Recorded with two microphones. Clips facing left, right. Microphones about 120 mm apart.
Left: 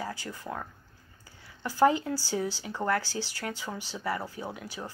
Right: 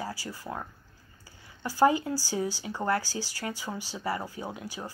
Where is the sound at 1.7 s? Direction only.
10° right (ahead or behind).